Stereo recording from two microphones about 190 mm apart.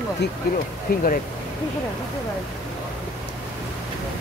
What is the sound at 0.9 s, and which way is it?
Speech, 50° left (ahead or behind).